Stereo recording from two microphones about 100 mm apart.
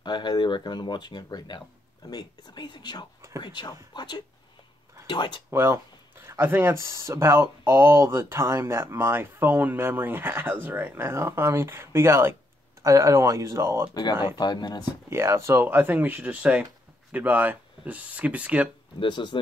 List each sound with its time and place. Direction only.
0.0 s speech: 50° left (ahead or behind)
5.5 s speech: 25° right (ahead or behind)
14.4 s speech: 45° left (ahead or behind)
15.0 s speech: 25° right (ahead or behind)
18.9 s speech: 55° left (ahead or behind)